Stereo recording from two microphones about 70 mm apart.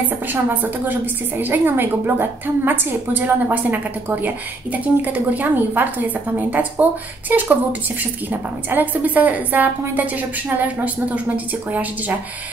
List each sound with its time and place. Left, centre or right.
0.3 s a woman's voice: right